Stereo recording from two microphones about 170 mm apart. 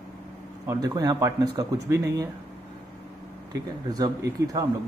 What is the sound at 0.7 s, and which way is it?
Speech, 20° right (ahead or behind).